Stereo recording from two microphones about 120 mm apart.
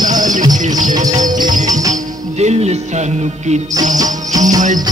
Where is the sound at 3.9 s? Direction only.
30° right (ahead or behind).